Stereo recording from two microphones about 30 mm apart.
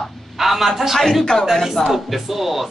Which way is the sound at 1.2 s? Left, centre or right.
Left.